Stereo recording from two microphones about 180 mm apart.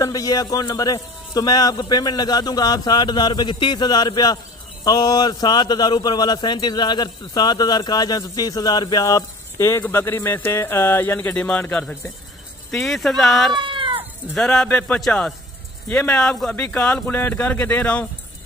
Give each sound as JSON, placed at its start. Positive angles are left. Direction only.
{"t": 0.0, "sound": "a man's voice", "side_deg": 20}
{"t": 13.7, "sound": "cat", "side_deg": -30}
{"t": 14.3, "sound": "a man's voice", "side_deg": 5}